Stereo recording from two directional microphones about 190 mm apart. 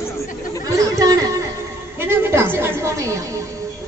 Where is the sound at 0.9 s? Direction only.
20° right (ahead or behind).